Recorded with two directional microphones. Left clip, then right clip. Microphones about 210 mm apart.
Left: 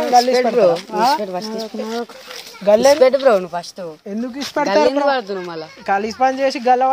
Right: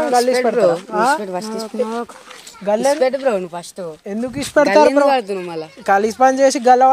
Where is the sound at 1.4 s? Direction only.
55° right (ahead or behind).